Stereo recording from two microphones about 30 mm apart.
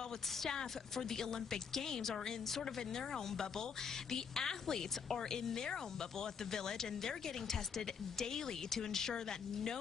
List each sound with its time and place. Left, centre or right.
0.5 s a woman's voice: centre